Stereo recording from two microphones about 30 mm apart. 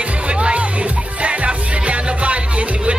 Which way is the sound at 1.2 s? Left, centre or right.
Right.